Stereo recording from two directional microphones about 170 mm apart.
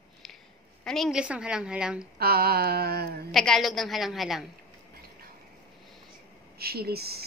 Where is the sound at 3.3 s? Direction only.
Centre (ahead or behind).